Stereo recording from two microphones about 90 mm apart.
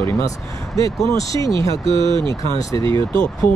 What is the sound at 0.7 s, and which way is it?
Speech, 35° left (ahead or behind).